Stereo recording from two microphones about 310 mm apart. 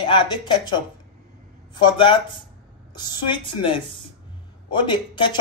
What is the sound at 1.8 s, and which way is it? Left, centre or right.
A man's voice, centre.